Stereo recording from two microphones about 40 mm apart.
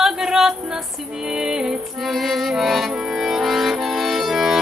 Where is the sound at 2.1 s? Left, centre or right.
Centre.